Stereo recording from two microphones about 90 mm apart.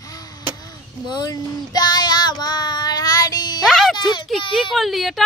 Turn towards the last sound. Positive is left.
turn(degrees=0)  # may be behind; listen again after turning